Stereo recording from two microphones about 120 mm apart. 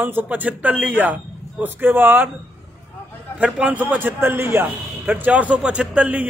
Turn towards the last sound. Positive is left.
turn(degrees=-10)  # may be behind; listen again after turning